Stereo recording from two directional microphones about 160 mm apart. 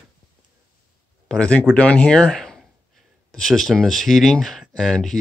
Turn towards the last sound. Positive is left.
turn(degrees=0)  # may be behind; listen again after turning